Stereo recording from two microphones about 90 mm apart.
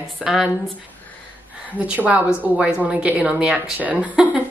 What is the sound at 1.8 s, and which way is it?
A woman's voice, 15° right (ahead or behind).